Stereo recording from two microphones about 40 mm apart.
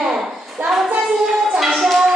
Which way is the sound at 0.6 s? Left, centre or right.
Right.